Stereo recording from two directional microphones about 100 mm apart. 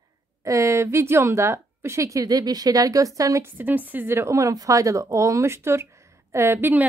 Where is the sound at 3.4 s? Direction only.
15° right (ahead or behind).